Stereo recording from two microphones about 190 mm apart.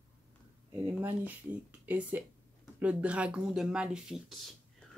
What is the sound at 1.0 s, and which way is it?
Speech, 10° right (ahead or behind).